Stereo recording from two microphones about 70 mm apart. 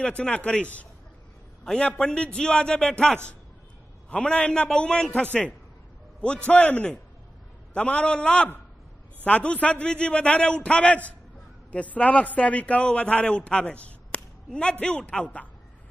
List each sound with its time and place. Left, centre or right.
0.0 s a man's voice: centre